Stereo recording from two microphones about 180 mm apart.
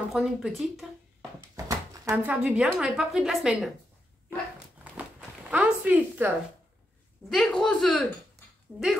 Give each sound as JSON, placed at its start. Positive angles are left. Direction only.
{"t": 0.1, "sound": "a woman's voice", "side_deg": 0}
{"t": 1.5, "sound": "dog", "side_deg": -20}
{"t": 2.2, "sound": "a woman's voice", "side_deg": -5}
{"t": 5.5, "sound": "a sound", "side_deg": -10}
{"t": 7.2, "sound": "a woman's voice", "side_deg": 5}